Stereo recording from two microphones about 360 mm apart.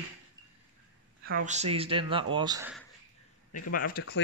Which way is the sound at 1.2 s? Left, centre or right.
Right.